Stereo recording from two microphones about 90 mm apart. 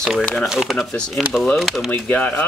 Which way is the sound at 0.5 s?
5° right (ahead or behind).